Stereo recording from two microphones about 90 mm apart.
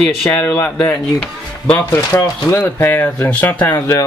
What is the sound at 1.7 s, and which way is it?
Speech, 30° left (ahead or behind).